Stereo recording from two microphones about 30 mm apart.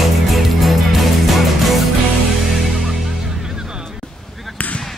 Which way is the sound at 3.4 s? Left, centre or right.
Right.